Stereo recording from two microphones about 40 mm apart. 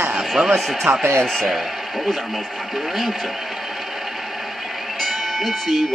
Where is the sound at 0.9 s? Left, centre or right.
Right.